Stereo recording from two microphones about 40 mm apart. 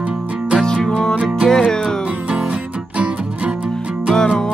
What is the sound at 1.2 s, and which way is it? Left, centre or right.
Music, right.